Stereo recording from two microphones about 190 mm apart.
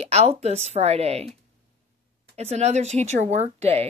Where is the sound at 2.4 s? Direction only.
35° right (ahead or behind).